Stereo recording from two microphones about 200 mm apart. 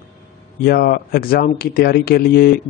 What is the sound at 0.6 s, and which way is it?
Speech, 50° left (ahead or behind).